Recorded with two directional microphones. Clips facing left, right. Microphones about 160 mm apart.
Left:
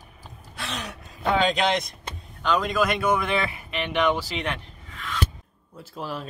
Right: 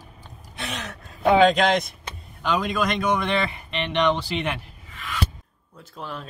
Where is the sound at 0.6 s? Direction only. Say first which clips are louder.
Right 2 dB; 20° right (ahead or behind).